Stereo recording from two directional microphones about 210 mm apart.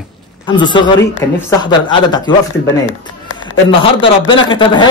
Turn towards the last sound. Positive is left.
turn(degrees=25)  # may be behind; listen again after turning